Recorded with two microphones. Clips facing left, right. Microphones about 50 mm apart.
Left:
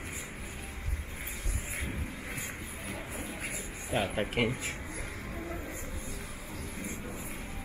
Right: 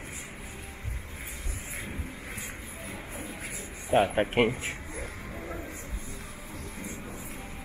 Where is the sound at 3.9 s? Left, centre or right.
Right.